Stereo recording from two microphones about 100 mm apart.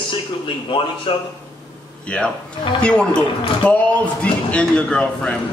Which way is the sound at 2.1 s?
10° left (ahead or behind).